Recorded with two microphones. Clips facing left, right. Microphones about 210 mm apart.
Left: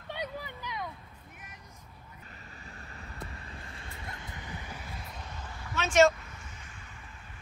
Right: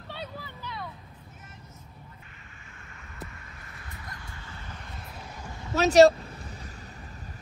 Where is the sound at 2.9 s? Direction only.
35° left (ahead or behind); by 4.8 s 15° left (ahead or behind).